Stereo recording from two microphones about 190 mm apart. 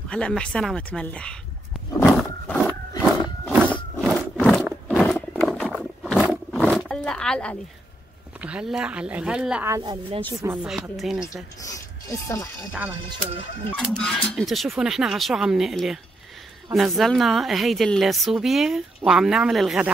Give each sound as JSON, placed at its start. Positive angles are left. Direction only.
{"t": 0.1, "sound": "a woman's voice", "side_deg": 5}
{"t": 2.0, "sound": "roar", "side_deg": 10}
{"t": 3.0, "sound": "a sound", "side_deg": -5}
{"t": 4.1, "sound": "a sound", "side_deg": 5}
{"t": 4.8, "sound": "roaring cats", "side_deg": 5}
{"t": 8.4, "sound": "a woman's voice", "side_deg": -5}
{"t": 9.8, "sound": "speech", "side_deg": -20}
{"t": 10.4, "sound": "a woman's voice", "side_deg": -10}
{"t": 11.6, "sound": "speech", "side_deg": 15}
{"t": 13.7, "sound": "a woman's voice", "side_deg": 5}